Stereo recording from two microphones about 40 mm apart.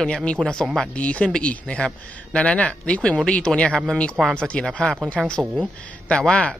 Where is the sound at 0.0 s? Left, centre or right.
Left.